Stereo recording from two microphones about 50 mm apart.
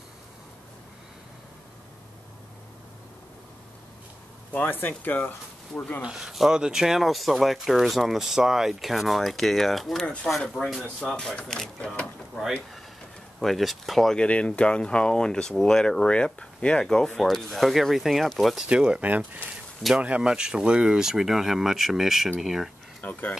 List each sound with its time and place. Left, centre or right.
4.5 s speech: left
6.1 s speech: centre
13.4 s speech: centre
14.1 s speech: left
16.8 s speech: centre
18.7 s speech: right
19.0 s speech: right; by 22.7 s centre
23.0 s speech: left